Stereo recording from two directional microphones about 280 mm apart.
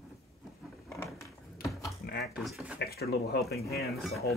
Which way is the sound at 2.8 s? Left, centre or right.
Left.